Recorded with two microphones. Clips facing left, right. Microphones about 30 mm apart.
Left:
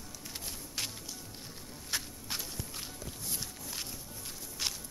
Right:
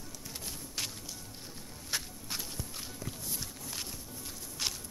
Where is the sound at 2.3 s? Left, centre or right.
Centre.